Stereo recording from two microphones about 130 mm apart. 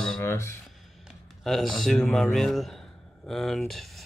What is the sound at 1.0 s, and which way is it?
Speech, centre (ahead or behind).